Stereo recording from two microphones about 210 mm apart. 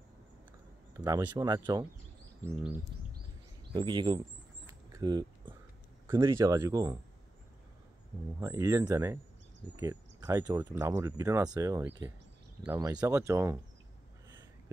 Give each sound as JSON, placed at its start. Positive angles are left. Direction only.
{"t": 0.9, "sound": "speech", "side_deg": -15}
{"t": 3.7, "sound": "speech", "side_deg": -20}
{"t": 4.6, "sound": "a sound", "side_deg": -20}
{"t": 6.0, "sound": "speech", "side_deg": -15}
{"t": 8.4, "sound": "speech", "side_deg": -15}